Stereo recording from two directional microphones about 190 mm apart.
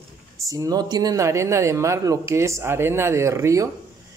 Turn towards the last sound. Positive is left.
turn(degrees=-15)  # may be behind; listen again after turning